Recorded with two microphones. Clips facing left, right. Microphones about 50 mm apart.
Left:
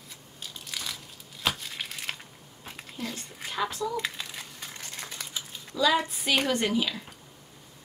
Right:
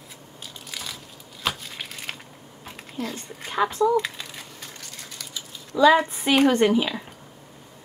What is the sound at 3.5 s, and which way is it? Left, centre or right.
Speech, right.